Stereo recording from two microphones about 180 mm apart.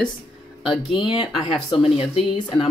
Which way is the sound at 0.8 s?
30° left (ahead or behind).